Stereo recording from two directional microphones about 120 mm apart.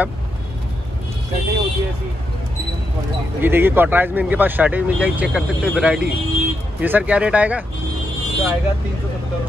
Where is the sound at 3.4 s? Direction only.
20° right (ahead or behind).